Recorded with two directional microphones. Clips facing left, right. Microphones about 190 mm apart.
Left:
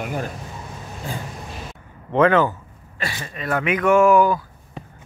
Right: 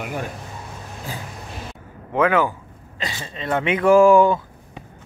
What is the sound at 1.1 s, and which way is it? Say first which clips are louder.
A man's voice: left 3 dB; 5° right (ahead or behind).